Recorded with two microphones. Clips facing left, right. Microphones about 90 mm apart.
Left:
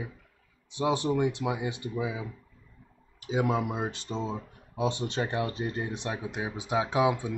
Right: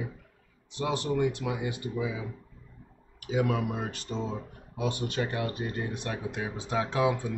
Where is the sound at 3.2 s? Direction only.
25° left (ahead or behind).